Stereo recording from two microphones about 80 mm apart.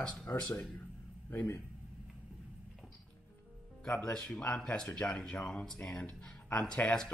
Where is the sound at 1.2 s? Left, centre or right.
Left.